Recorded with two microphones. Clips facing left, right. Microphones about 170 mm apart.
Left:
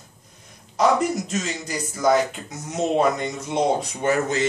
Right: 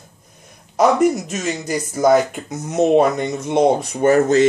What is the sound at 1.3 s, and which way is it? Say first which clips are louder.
Speech: right 5 dB; 50° right (ahead or behind).